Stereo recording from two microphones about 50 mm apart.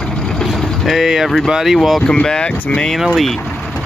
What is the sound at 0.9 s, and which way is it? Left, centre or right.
Speech, centre.